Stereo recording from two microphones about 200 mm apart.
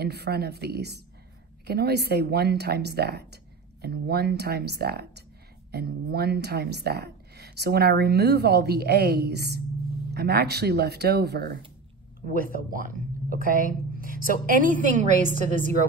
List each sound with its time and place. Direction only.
0.0 s a woman's voice: 55° right (ahead or behind)
12.7 s a woman's voice: 45° right (ahead or behind)